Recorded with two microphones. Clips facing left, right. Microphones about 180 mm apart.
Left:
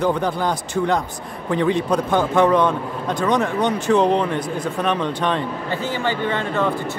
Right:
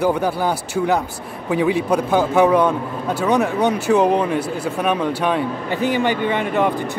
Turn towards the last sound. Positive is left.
turn(degrees=-15)  # may be behind; listen again after turning